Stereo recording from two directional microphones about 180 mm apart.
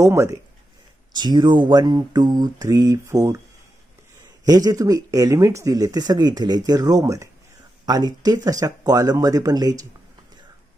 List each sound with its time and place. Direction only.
0.0 s speech: 15° right (ahead or behind)
4.5 s speech: 20° right (ahead or behind)